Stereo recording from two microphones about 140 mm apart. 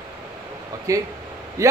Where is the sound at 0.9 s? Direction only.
25° right (ahead or behind).